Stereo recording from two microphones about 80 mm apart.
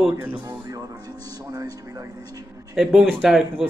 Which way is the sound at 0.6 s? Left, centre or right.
Right.